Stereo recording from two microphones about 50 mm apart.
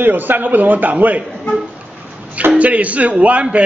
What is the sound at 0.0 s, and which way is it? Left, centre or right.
A man's voice, right.